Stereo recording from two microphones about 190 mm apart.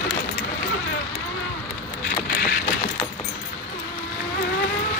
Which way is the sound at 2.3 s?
50° left (ahead or behind).